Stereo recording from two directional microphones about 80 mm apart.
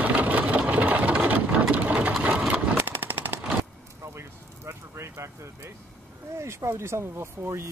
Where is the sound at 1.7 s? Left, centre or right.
Centre.